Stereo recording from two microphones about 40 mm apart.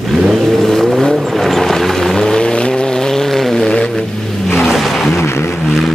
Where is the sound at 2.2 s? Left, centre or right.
Centre.